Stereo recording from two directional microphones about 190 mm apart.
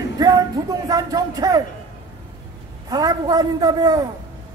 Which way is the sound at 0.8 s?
20° right (ahead or behind).